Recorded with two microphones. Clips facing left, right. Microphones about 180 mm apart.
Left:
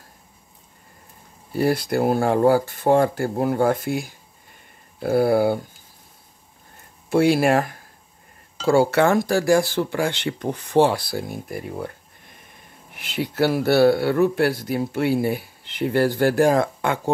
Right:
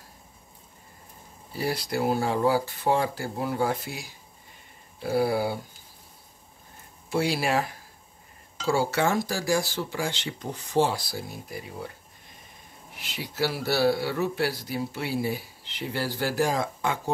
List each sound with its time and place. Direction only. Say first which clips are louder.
1.5 s speech: left 8 dB; 55° left (ahead or behind)
7.1 s speech: left 9 dB; 55° left (ahead or behind)
12.9 s speech: left 11 dB; 55° left (ahead or behind)